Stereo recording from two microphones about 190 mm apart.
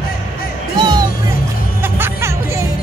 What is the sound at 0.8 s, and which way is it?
Music, 20° right (ahead or behind).